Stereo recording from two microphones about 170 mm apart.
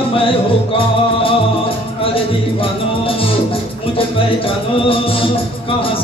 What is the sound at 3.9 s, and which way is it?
Music, 35° left (ahead or behind).